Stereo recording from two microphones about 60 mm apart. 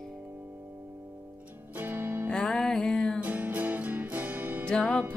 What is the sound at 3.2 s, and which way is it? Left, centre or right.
Music, right.